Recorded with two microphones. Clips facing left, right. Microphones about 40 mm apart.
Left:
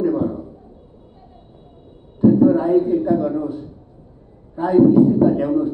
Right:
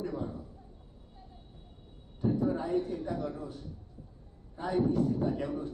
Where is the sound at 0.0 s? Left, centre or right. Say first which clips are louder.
Left 17 dB; left.